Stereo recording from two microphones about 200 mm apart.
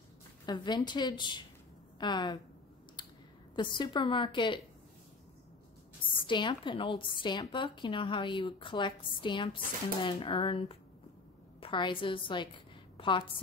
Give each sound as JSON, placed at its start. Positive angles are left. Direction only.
{"t": 0.5, "sound": "a woman's voice", "side_deg": 20}
{"t": 3.0, "sound": "a sound", "side_deg": 20}
{"t": 3.5, "sound": "a woman's voice", "side_deg": 25}
{"t": 6.2, "sound": "a woman's voice", "side_deg": 25}